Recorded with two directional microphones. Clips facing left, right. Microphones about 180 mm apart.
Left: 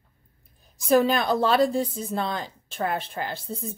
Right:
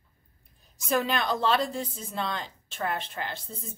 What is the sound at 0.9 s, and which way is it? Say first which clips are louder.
Speech: left 7 dB; 35° left (ahead or behind).